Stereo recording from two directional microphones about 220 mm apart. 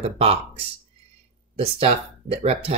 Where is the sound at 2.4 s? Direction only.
25° right (ahead or behind).